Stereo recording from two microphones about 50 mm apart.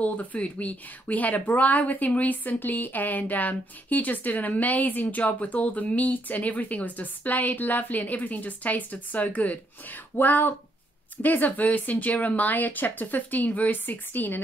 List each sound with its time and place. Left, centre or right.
0.0 s speech: left